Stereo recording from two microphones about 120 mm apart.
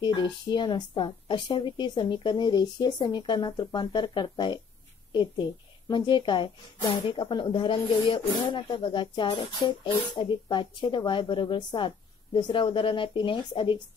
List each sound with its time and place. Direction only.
0.0 s a woman's voice: 40° left (ahead or behind)